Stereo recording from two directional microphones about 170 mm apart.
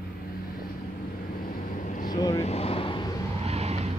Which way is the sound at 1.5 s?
55° left (ahead or behind).